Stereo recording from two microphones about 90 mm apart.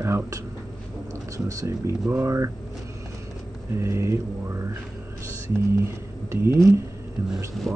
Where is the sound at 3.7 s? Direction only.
30° right (ahead or behind).